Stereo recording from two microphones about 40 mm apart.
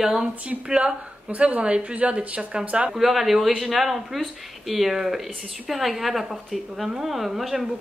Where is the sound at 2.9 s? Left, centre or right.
Centre.